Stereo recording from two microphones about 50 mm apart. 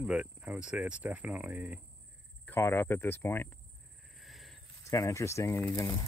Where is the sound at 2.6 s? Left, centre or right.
Left.